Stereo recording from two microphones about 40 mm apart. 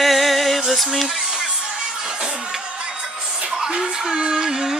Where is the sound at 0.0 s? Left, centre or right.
Centre.